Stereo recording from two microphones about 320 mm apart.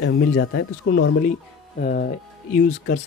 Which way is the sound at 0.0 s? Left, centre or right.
Left.